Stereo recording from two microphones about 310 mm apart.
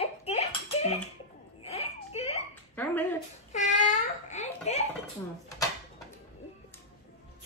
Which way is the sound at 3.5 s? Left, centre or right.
Left.